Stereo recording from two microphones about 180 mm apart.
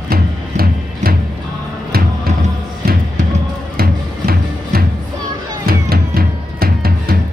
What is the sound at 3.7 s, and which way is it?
Music, 55° right (ahead or behind).